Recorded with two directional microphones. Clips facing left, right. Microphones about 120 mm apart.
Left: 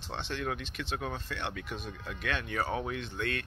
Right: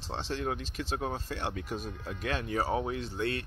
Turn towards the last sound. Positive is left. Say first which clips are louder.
# right 2 dB
turn(degrees=-35)  # may be behind; listen again after turning